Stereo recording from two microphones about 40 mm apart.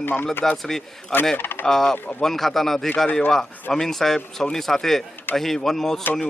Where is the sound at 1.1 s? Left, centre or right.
Left.